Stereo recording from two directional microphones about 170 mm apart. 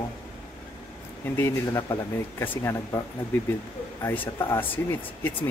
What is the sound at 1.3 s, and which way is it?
Speech, 15° left (ahead or behind).